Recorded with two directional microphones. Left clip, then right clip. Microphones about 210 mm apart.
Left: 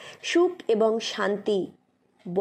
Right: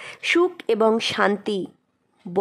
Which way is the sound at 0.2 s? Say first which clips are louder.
Right 3 dB; 20° right (ahead or behind).